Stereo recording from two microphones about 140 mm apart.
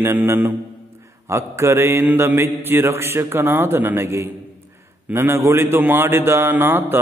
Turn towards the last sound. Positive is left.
turn(degrees=-15)  # may be behind; listen again after turning